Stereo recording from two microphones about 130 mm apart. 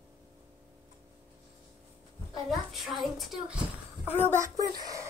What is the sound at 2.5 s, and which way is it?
A woman's voice, centre (ahead or behind).